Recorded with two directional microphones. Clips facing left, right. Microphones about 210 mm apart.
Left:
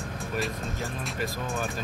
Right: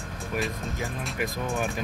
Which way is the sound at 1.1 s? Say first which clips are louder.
Right 3 dB; 15° right (ahead or behind).